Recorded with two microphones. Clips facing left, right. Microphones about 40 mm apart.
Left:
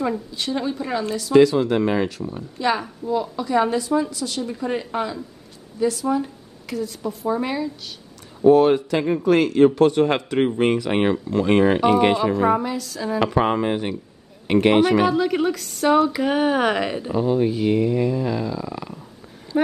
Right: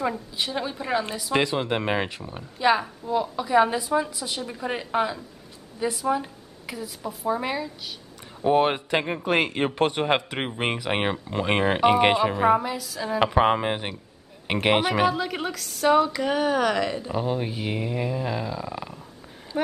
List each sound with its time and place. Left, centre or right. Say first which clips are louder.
0.4 s a woman's voice: left 3 dB; centre
1.3 s speech: left 9 dB; right
2.6 s a woman's voice: right 1 dB; centre
8.5 s speech: left 7 dB; right
12.5 s a woman's voice: left 2 dB; centre
13.2 s a woman's voice: even; centre; by 17.1 s left
17.1 s a woman's voice: left 7 dB; centre
19.5 s a sound: left 5 dB; centre